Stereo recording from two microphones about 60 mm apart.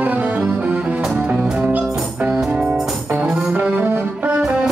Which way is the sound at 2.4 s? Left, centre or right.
Centre.